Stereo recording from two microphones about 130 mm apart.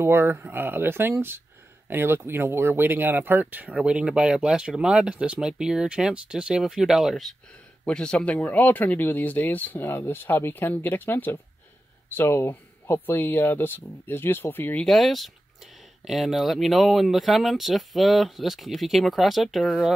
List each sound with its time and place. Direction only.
0.0 s speech: 20° right (ahead or behind); by 14.9 s 15° left (ahead or behind)
14.9 s speech: centre (ahead or behind)